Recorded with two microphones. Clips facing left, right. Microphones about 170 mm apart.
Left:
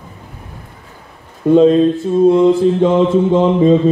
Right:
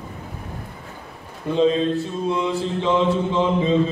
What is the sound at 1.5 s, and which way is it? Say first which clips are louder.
Mantra: left 9 dB; 50° left (ahead or behind).